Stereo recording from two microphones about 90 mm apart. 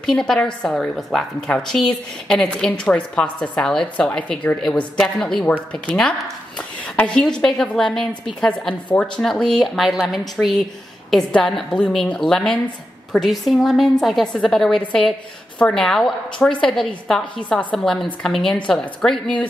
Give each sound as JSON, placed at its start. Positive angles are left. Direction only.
{"t": 0.0, "sound": "a woman's voice", "side_deg": 5}
{"t": 7.0, "sound": "a woman's voice", "side_deg": 10}